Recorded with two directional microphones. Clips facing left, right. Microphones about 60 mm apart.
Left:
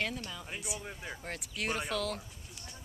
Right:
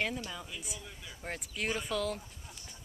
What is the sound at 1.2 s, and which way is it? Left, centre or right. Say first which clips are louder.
Speech: right 4 dB; centre.